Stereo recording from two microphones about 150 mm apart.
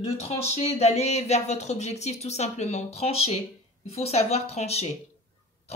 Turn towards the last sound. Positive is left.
turn(degrees=45)  # may be behind; listen again after turning